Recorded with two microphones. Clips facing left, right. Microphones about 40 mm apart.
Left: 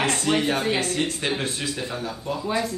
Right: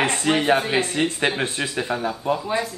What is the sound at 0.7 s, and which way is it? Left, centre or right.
Speech, right.